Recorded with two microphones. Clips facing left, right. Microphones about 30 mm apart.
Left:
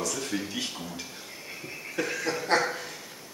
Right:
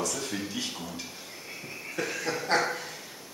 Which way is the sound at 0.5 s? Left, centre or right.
Centre.